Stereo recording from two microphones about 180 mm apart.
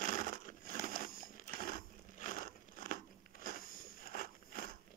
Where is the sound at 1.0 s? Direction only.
50° left (ahead or behind).